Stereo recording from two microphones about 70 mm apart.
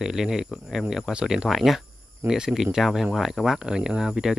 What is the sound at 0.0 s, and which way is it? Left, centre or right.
Speech, centre.